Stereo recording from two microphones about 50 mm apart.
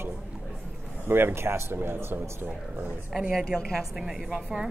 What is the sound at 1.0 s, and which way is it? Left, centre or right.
Speech, right.